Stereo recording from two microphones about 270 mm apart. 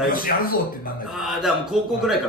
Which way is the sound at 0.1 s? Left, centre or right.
Left.